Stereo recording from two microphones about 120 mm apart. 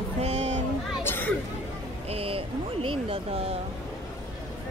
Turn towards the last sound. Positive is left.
turn(degrees=-50)  # may be behind; listen again after turning